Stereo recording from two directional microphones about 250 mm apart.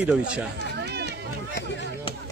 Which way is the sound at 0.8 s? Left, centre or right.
Right.